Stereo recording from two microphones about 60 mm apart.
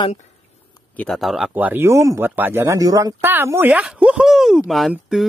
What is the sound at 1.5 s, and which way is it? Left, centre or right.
Speech, right.